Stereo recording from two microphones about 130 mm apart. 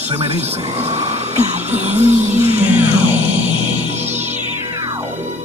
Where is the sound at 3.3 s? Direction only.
60° right (ahead or behind).